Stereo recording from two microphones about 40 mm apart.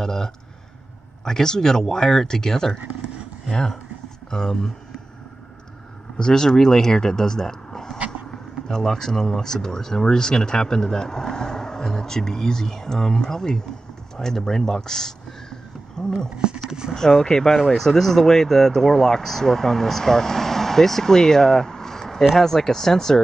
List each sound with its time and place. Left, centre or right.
0.0 s speech: centre
4.3 s speech: centre
6.1 s speech: centre
16.3 s speech: centre
16.9 s speech: centre